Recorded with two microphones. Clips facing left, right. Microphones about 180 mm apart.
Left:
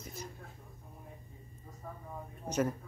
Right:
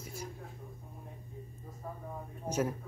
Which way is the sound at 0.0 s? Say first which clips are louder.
Right 2 dB; 10° right (ahead or behind).